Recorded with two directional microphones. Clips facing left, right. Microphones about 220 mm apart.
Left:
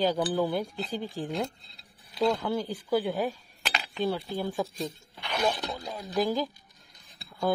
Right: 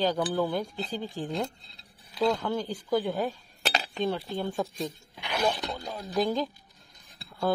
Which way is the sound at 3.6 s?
35° right (ahead or behind).